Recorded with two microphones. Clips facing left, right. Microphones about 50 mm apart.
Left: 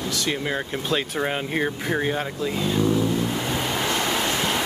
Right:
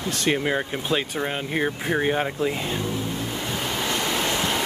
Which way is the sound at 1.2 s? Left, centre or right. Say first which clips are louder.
Left 1 dB; centre.